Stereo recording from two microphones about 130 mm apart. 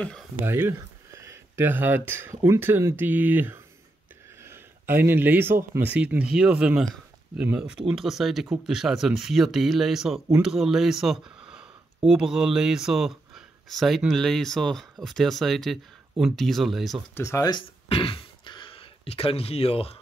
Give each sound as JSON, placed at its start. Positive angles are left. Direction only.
{"t": 0.0, "sound": "speech", "side_deg": 5}
{"t": 0.4, "sound": "speech", "side_deg": -15}
{"t": 4.4, "sound": "a sound", "side_deg": -20}
{"t": 5.8, "sound": "speech", "side_deg": -10}
{"t": 17.1, "sound": "speech", "side_deg": 20}